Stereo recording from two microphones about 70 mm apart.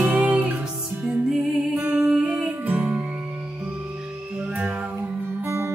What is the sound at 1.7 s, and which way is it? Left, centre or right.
Humming, right.